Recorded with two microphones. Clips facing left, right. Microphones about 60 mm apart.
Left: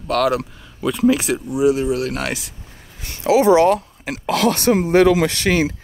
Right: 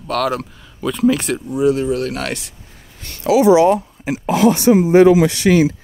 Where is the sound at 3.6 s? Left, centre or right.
Left.